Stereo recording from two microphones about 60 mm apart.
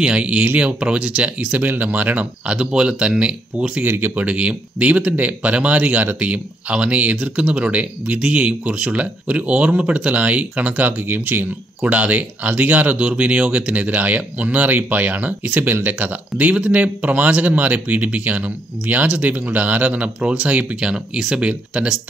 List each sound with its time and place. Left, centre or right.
0.0 s speech: centre
3.8 s speech: right; by 22.0 s centre